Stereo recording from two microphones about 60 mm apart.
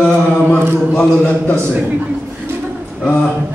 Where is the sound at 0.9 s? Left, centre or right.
Centre.